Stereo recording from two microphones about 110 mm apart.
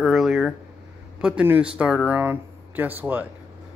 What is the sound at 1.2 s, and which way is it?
A man's voice, 15° right (ahead or behind).